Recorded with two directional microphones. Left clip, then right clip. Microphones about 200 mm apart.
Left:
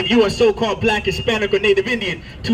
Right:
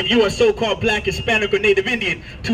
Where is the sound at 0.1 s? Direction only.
20° right (ahead or behind).